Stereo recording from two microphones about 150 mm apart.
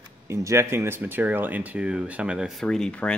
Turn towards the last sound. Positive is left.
turn(degrees=5)  # may be behind; listen again after turning